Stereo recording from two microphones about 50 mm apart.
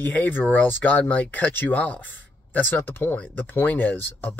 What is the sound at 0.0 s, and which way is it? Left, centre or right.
Speech, left.